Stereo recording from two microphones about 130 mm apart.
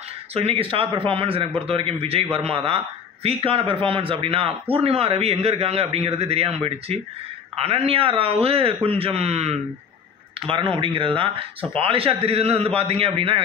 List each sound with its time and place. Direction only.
0.3 s a man's voice: 50° right (ahead or behind)
10.5 s a man's voice: 40° right (ahead or behind)